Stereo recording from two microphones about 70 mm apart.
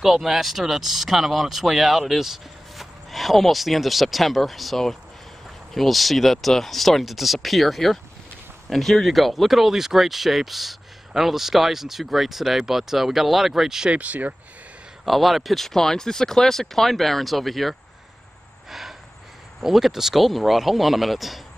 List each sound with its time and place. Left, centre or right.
0.0 s speech: centre
13.9 s speech: right
15.0 s speech: centre
18.7 s a sound: centre
19.6 s speech: centre